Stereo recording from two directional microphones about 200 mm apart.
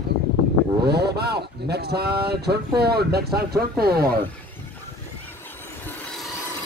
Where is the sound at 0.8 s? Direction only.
55° right (ahead or behind).